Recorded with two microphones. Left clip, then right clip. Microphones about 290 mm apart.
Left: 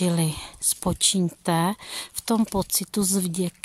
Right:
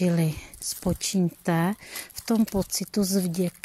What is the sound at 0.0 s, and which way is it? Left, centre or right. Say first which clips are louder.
Speech: left 1 dB; centre.